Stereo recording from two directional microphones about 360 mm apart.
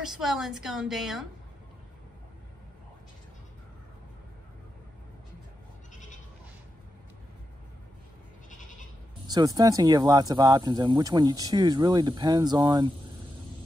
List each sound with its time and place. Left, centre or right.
0.0 s a woman's voice: centre
8.5 s goat: left
9.3 s speech: centre